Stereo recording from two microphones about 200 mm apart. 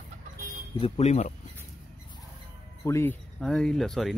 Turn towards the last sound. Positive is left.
turn(degrees=0)  # may be behind; listen again after turning